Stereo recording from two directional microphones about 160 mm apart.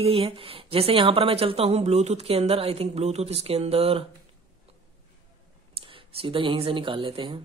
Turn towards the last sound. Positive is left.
turn(degrees=-30)  # may be behind; listen again after turning